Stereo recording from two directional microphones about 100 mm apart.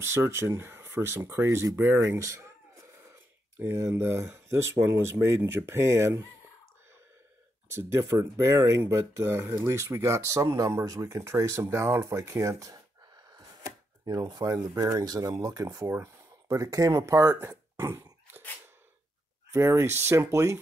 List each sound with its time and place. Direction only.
0.0 s speech: 25° right (ahead or behind)
7.7 s speech: 25° right (ahead or behind)
19.5 s speech: 25° right (ahead or behind)